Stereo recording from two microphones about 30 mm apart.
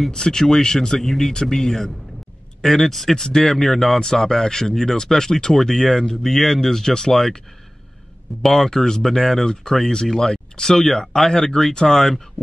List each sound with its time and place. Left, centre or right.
0.1 s speech: left
2.8 s speech: centre